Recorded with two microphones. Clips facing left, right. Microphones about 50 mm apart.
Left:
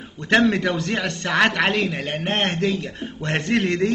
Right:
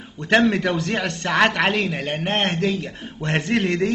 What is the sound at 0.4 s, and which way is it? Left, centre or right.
Speech, right.